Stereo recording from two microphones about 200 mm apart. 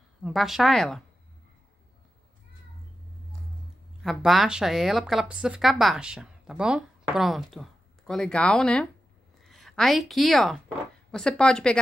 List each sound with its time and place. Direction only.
0.2 s speech: centre (ahead or behind)
4.0 s a woman's voice: centre (ahead or behind)